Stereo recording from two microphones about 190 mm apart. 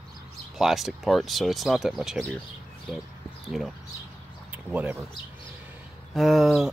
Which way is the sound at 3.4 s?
Centre (ahead or behind).